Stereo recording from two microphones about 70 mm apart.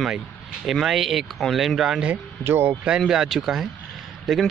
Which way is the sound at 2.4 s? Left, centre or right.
Right.